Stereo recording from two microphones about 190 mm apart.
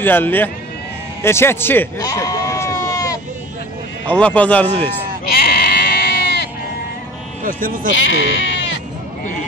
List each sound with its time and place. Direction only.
0.0 s speech: 10° left (ahead or behind)
1.2 s a sound: 10° left (ahead or behind)
4.1 s speech: 5° left (ahead or behind)
4.6 s a man's voice: 30° right (ahead or behind)
5.4 s sheep: 55° left (ahead or behind)
7.4 s speech: 45° right (ahead or behind)
8.0 s speech: 75° left (ahead or behind)